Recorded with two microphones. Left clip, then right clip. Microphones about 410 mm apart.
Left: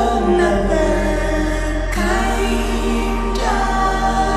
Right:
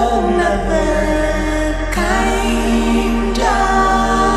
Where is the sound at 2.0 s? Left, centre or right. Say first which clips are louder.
Right 2 dB; right.